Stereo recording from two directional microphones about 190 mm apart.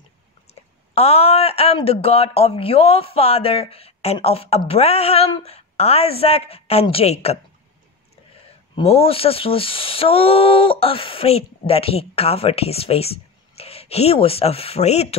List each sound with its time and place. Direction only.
0.9 s speech: 30° left (ahead or behind)
8.7 s speech: 30° left (ahead or behind)